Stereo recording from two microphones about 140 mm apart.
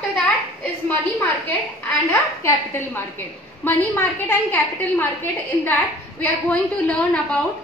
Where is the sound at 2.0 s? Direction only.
20° left (ahead or behind).